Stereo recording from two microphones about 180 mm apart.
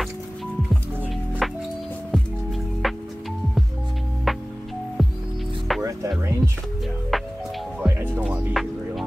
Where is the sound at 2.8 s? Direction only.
Centre (ahead or behind).